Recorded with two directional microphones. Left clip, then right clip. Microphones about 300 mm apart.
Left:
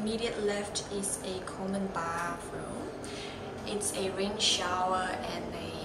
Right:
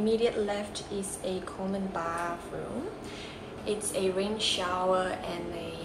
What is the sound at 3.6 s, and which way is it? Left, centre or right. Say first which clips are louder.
Speech: right 4 dB; centre.